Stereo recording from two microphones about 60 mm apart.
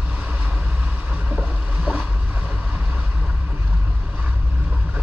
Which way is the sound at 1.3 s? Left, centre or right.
Right.